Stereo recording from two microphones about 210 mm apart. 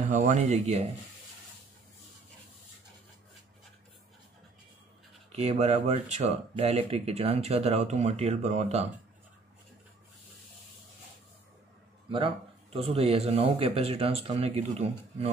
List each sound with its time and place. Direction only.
0.0 s speech: 35° right (ahead or behind)
5.3 s speech: 30° right (ahead or behind)
12.7 s speech: 30° right (ahead or behind)